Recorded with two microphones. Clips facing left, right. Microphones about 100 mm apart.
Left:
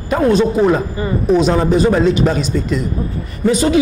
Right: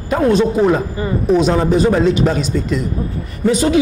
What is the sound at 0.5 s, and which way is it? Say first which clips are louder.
Speech: even; 30° left (ahead or behind).